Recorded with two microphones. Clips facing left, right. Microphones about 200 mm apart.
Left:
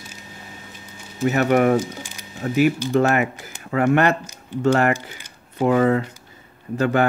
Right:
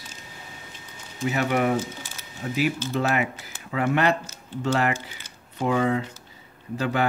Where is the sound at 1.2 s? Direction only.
50° left (ahead or behind).